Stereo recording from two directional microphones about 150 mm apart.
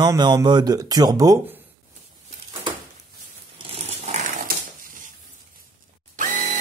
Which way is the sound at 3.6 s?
40° right (ahead or behind).